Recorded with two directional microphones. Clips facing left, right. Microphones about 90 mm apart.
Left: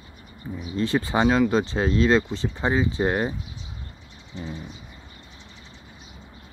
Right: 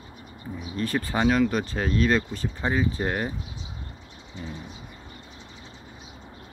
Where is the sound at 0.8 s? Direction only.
20° left (ahead or behind).